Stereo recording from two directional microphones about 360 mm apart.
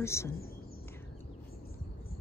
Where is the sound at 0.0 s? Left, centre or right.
Centre.